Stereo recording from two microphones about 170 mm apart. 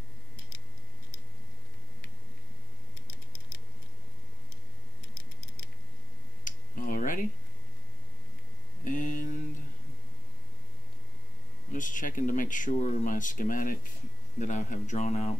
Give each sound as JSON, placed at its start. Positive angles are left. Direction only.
{"t": 6.4, "sound": "a sound", "side_deg": 55}
{"t": 8.8, "sound": "mantra", "side_deg": 50}
{"t": 11.7, "sound": "speech", "side_deg": 50}